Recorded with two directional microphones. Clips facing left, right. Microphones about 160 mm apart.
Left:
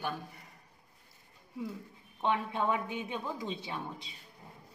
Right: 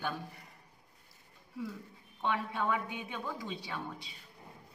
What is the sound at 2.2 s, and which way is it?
A woman's voice, 25° left (ahead or behind).